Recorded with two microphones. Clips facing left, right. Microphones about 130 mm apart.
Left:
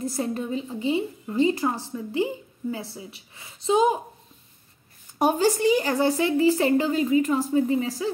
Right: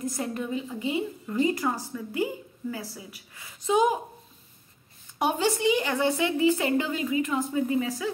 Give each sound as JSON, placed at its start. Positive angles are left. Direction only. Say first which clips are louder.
{"t": 0.0, "sound": "a woman's voice", "louder": "left 3 dB", "side_deg": 30}
{"t": 5.2, "sound": "a woman's voice", "louder": "left 4 dB", "side_deg": 40}